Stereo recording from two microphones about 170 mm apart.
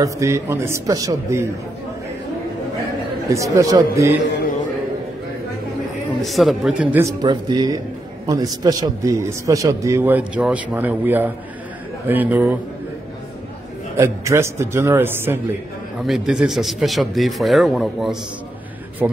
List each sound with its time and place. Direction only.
0.0 s a man's voice: 15° right (ahead or behind)
3.3 s a man's voice: 20° right (ahead or behind)
6.2 s a man's voice: centre (ahead or behind)
13.9 s a man's voice: 15° right (ahead or behind)
16.0 s a man's voice: centre (ahead or behind)